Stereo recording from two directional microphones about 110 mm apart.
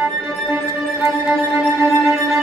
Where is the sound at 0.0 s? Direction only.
25° right (ahead or behind).